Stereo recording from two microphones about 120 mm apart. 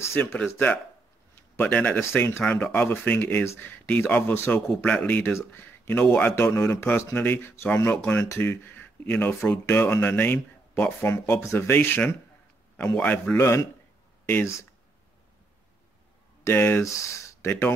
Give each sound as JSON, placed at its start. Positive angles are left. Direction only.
{"t": 0.1, "sound": "speech", "side_deg": 15}
{"t": 16.4, "sound": "speech", "side_deg": 15}